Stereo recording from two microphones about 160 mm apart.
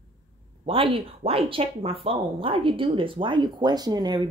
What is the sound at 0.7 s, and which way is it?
Speech, 35° right (ahead or behind).